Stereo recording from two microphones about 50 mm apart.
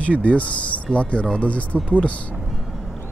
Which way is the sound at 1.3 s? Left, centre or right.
Left.